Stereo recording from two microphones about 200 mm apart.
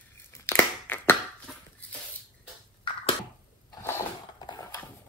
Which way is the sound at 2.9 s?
25° left (ahead or behind).